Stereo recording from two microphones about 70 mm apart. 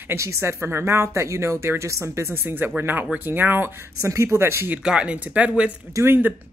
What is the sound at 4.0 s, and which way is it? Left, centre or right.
Speech, right.